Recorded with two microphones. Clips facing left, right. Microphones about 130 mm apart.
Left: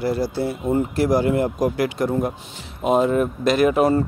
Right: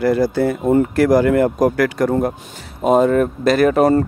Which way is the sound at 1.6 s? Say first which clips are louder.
Right 5 dB; 50° right (ahead or behind).